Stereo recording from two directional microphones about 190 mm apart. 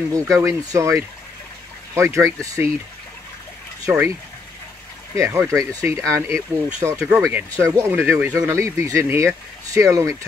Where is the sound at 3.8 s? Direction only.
15° right (ahead or behind).